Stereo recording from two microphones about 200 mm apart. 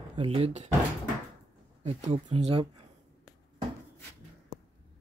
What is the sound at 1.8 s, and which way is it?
Speech, 35° right (ahead or behind).